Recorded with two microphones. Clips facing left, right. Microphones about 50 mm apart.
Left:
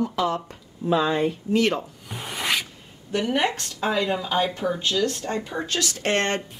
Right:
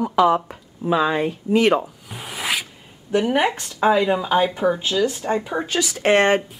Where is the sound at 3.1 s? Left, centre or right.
Centre.